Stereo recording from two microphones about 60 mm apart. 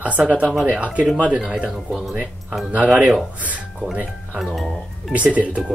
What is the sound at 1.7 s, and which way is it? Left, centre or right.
Speech, centre.